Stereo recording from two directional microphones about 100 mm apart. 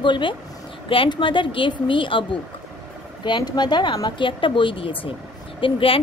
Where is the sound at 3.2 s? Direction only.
45° left (ahead or behind).